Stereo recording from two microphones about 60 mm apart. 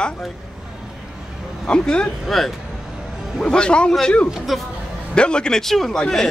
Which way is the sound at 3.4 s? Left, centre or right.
Centre.